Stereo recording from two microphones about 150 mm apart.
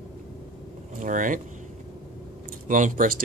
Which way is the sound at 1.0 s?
60° right (ahead or behind).